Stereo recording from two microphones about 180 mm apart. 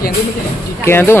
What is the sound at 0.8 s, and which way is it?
Speech, 15° left (ahead or behind).